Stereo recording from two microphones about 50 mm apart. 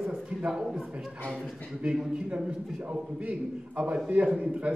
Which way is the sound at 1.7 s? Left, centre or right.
Centre.